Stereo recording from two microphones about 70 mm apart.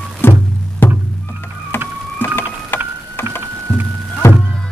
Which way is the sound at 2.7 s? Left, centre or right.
Left.